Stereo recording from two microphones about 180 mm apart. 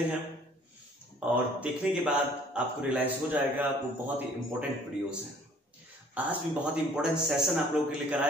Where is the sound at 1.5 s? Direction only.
5° right (ahead or behind).